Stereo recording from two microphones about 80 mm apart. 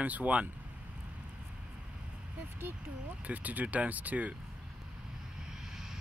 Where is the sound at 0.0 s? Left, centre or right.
Centre.